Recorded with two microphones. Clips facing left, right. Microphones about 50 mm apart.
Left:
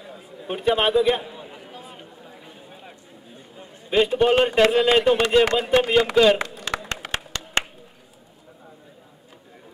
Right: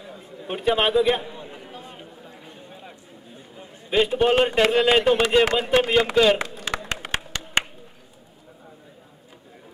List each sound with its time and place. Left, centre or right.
0.0 s a sound: centre
3.5 s a man's voice: centre
7.0 s clapping: centre